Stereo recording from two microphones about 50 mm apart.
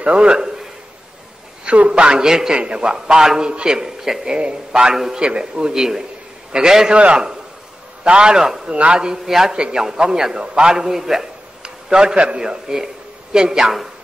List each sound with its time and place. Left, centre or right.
0.0 s a man's voice: right
1.6 s a man's voice: right
4.9 s a man's voice: centre
5.2 s a man's voice: centre
8.7 s a man's voice: right